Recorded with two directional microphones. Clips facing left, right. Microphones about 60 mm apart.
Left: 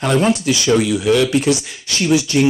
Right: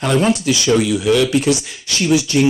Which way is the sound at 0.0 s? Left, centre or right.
Left.